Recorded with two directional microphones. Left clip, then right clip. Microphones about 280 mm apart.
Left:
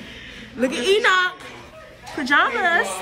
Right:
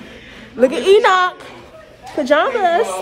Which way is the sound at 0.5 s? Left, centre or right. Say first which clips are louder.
Right 8 dB; centre.